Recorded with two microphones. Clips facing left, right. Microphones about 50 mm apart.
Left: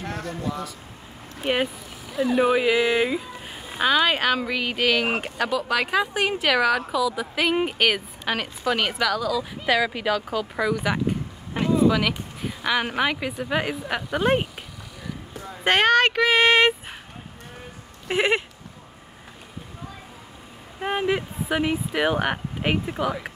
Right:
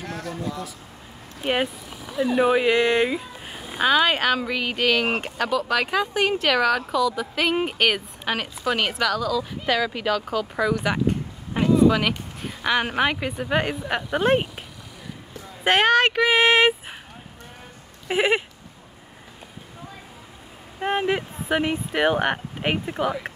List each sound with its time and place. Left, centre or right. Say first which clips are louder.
0.0 s a sound: left 1 dB; left
1.4 s a woman's voice: even; centre
11.5 s a sound: right 2 dB; centre
12.4 s a woman's voice: right 1 dB; centre
15.6 s a woman's voice: even; centre
18.0 s a woman's voice: right 1 dB; centre
20.8 s speech: right 1 dB; centre